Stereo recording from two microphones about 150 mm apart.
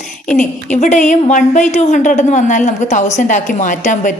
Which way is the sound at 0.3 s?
55° left (ahead or behind).